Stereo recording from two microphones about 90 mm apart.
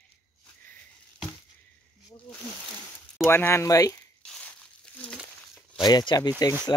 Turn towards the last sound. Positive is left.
turn(degrees=45)  # may be behind; listen again after turning